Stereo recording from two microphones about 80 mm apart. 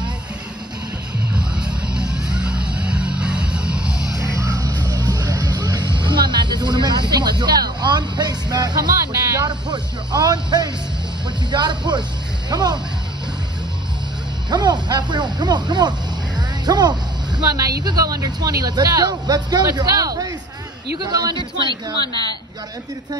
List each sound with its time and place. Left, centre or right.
1.3 s vehicle: centre
4.4 s music: right
10.1 s speech: right
14.5 s speech: right
16.3 s a sound: right
17.5 s speech: right
22.0 s speech: left